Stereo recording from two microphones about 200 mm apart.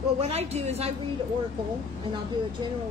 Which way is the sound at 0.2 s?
30° right (ahead or behind).